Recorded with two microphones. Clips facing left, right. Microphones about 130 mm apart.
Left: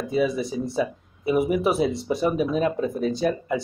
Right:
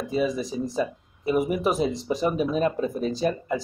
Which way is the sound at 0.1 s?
5° left (ahead or behind).